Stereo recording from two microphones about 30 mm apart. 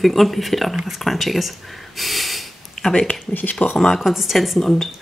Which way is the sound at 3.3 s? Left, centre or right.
Left.